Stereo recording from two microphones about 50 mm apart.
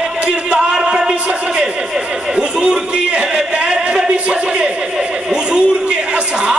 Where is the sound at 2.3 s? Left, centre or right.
Right.